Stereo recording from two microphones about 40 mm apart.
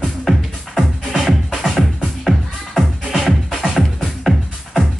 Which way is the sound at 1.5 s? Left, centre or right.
Centre.